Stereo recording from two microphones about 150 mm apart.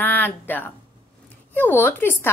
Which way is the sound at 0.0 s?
10° left (ahead or behind).